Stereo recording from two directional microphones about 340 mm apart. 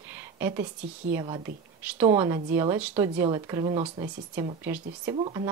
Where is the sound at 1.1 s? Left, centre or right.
Centre.